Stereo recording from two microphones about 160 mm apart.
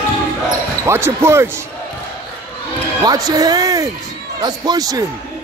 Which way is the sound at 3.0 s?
25° right (ahead or behind).